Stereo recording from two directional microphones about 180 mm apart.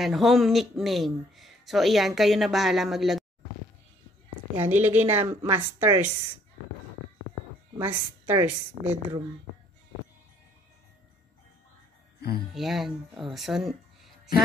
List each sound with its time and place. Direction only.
0.0 s speech: centre (ahead or behind)
4.6 s a woman's voice: 10° right (ahead or behind)
7.8 s a woman's voice: 10° right (ahead or behind)
12.2 s speech: 60° left (ahead or behind)
12.5 s speech: centre (ahead or behind)